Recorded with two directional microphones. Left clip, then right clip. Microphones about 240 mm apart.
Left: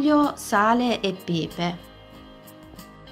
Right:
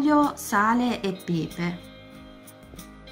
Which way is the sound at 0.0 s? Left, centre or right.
Centre.